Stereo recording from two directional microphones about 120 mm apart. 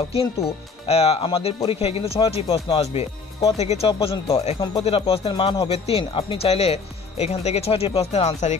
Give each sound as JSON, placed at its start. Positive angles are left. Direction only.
{"t": 0.1, "sound": "speech", "side_deg": 55}